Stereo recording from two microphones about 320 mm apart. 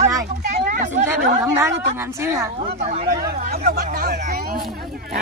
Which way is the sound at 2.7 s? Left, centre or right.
Right.